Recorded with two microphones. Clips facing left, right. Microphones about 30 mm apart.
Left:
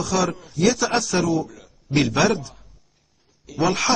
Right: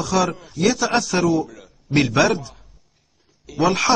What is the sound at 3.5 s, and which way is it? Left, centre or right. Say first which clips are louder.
Speech: right 2 dB; centre.